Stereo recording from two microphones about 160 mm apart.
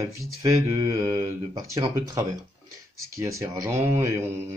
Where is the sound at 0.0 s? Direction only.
20° right (ahead or behind).